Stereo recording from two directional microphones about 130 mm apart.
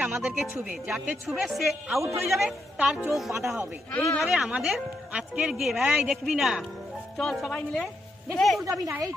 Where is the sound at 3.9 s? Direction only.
5° left (ahead or behind).